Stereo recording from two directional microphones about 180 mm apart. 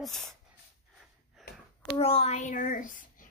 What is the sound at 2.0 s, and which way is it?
A child's voice, 35° left (ahead or behind).